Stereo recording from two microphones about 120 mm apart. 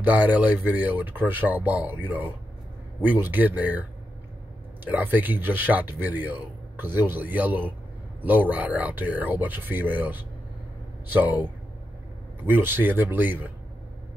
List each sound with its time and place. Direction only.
0.0 s speech: 15° right (ahead or behind)
4.8 s speech: 15° right (ahead or behind)
12.4 s speech: 15° right (ahead or behind)